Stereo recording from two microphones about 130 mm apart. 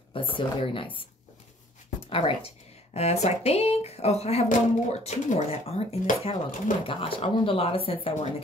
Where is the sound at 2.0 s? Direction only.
45° left (ahead or behind).